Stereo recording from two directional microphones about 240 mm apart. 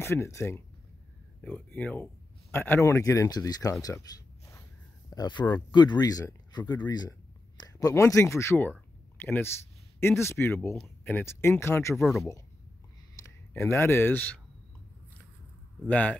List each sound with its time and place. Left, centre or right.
0.0 s speech: centre
5.1 s speech: centre
12.0 s speech: centre
13.5 s speech: centre
15.8 s speech: centre